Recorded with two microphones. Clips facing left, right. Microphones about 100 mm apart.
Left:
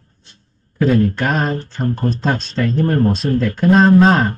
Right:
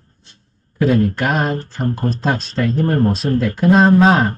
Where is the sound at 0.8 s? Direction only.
5° right (ahead or behind).